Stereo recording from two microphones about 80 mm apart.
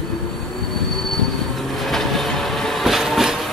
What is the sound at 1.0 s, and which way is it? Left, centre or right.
Train, centre.